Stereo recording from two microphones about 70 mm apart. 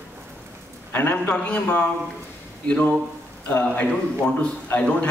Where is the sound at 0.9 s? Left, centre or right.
Left.